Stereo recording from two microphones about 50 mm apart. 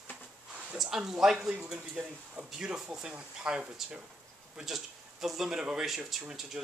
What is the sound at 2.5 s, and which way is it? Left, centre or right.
Speech, centre.